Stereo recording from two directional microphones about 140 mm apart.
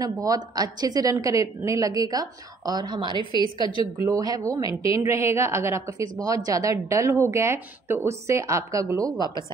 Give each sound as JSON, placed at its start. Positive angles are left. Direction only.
{"t": 0.0, "sound": "a woman's voice", "side_deg": -25}
{"t": 3.6, "sound": "a woman's voice", "side_deg": 40}
{"t": 4.0, "sound": "a woman's voice", "side_deg": -25}